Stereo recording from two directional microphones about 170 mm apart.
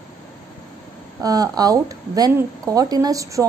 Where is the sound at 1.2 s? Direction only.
20° right (ahead or behind).